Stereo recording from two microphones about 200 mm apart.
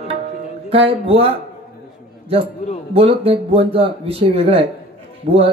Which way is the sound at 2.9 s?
30° right (ahead or behind).